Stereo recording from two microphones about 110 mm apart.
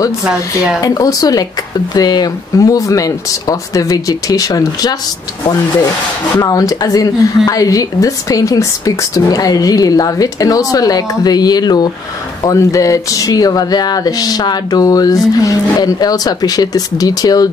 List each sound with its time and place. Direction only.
0.7 s a woman's voice: 35° left (ahead or behind)
6.4 s a woman's voice: 35° left (ahead or behind)